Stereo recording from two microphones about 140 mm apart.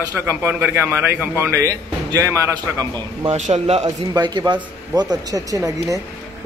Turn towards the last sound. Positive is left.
turn(degrees=-25)  # may be behind; listen again after turning